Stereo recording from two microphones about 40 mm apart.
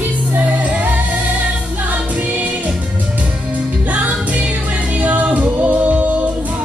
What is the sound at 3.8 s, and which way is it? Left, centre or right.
Music, right.